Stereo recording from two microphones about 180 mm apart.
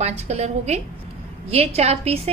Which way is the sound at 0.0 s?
35° right (ahead or behind).